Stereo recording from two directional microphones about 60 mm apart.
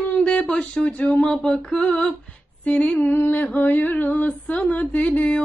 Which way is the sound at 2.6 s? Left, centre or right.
Centre.